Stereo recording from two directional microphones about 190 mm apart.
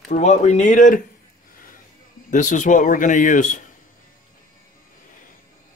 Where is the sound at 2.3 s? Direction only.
40° left (ahead or behind).